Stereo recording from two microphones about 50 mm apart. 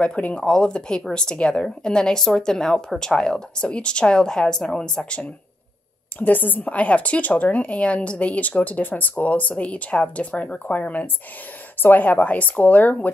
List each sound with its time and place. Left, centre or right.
0.0 s a woman's voice: left
6.1 s speech: left